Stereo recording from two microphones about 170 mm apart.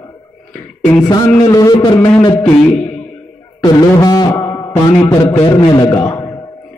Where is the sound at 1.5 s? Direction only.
20° left (ahead or behind).